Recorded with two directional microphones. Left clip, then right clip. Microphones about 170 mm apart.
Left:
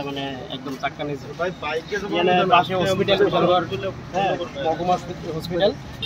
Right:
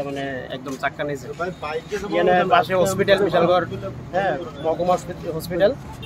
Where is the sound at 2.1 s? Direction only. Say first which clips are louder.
Right 1 dB; 5° right (ahead or behind).